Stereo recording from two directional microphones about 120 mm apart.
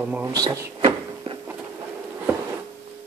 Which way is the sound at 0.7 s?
50° right (ahead or behind).